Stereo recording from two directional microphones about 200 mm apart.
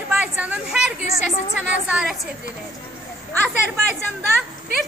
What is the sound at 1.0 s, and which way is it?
Speech, 30° left (ahead or behind).